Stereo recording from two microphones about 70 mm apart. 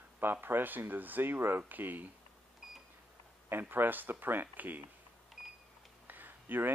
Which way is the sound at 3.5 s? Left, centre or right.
Right.